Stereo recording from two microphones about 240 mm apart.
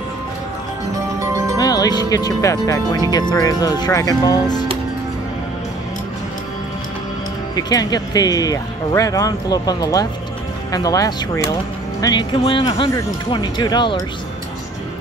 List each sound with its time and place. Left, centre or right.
1.6 s speech: centre
7.5 s speech: centre